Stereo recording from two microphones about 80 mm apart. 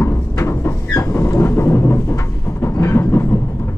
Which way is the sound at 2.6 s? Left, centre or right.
Left.